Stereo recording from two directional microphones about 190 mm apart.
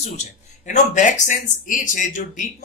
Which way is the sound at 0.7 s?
40° left (ahead or behind).